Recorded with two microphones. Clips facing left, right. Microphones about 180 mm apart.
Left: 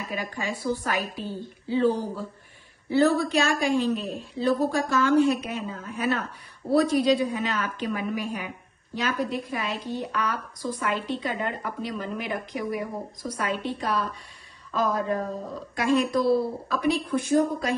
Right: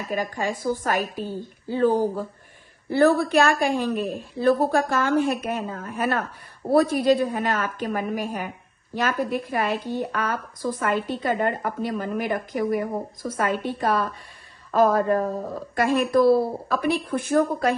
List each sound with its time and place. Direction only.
0.0 s a woman's voice: 45° right (ahead or behind)